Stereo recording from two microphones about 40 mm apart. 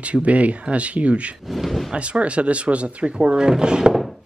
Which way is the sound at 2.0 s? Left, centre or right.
Right.